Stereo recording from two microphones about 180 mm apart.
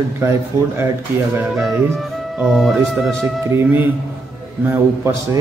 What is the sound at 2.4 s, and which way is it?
Speech, centre (ahead or behind).